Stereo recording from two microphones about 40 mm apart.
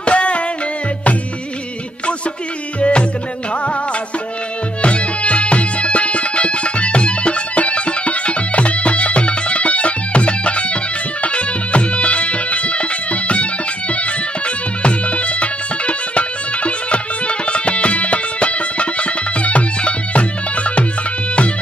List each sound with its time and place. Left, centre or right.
0.0 s music: left
2.8 s music: left
4.8 s music: left